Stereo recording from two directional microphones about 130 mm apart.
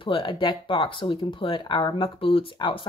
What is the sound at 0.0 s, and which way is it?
Speech, 40° left (ahead or behind).